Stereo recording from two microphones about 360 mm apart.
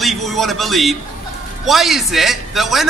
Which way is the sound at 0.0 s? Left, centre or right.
Centre.